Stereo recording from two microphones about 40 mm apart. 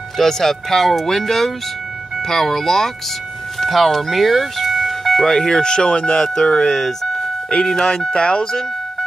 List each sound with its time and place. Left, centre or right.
0.2 s speech: centre
6.7 s speech: centre
7.4 s speech: centre